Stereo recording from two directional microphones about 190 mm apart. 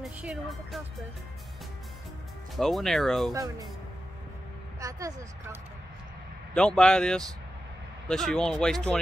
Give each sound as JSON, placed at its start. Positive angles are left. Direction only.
{"t": 0.0, "sound": "speech", "side_deg": -5}
{"t": 2.5, "sound": "speech", "side_deg": 0}
{"t": 4.7, "sound": "speech", "side_deg": -15}
{"t": 6.5, "sound": "speech", "side_deg": 5}